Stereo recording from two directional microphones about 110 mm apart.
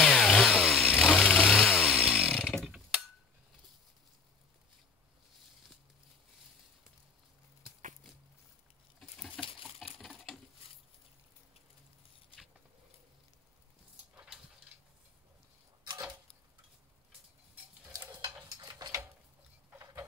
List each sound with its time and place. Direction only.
0.0 s chainsaw: 10° left (ahead or behind)
0.7 s vehicle: 10° right (ahead or behind)
1.8 s chainsaw: 10° right (ahead or behind)
9.4 s a sound: 5° left (ahead or behind)
9.9 s patter: centre (ahead or behind)
14.1 s dog: 5° right (ahead or behind)
18.5 s a sound: 35° right (ahead or behind)